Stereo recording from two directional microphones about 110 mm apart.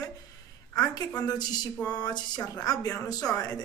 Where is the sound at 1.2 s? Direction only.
40° left (ahead or behind).